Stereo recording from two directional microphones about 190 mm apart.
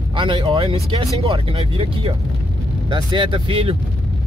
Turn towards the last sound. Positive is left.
turn(degrees=-30)  # may be behind; listen again after turning